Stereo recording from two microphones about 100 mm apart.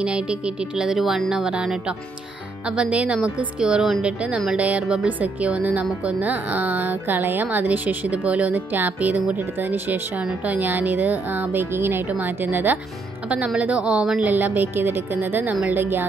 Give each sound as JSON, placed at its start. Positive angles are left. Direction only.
{"t": 0.0, "sound": "a woman's voice", "side_deg": -10}